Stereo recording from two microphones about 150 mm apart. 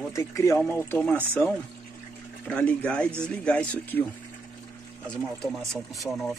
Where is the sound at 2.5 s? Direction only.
10° left (ahead or behind).